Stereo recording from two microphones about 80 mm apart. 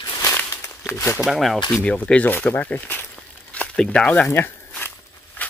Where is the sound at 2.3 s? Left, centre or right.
Left.